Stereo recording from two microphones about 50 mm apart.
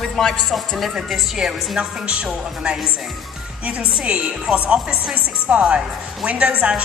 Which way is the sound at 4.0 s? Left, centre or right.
Right.